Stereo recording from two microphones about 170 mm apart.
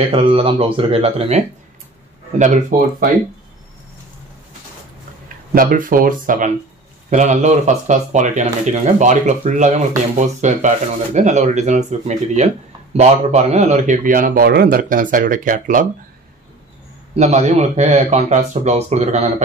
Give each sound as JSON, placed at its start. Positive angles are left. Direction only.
{"t": 0.1, "sound": "a man's voice", "side_deg": -30}
{"t": 5.5, "sound": "a man's voice", "side_deg": -55}
{"t": 17.1, "sound": "a man's voice", "side_deg": -40}